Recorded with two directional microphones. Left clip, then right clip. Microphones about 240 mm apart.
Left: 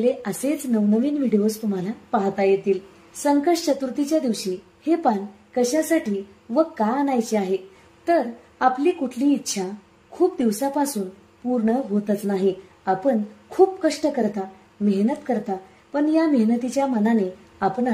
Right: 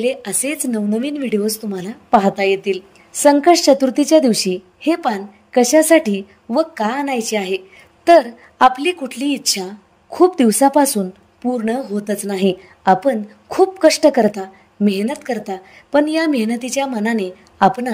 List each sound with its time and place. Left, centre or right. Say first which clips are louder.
0.0 s a woman's voice: right 2 dB; right